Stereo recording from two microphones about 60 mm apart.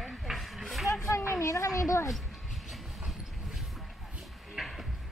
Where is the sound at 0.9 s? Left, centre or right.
Left.